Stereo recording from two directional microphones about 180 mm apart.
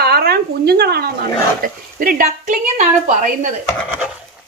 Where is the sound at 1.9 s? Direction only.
50° right (ahead or behind).